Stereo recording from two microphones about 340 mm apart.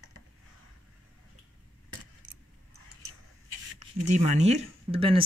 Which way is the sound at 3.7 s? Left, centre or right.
Centre.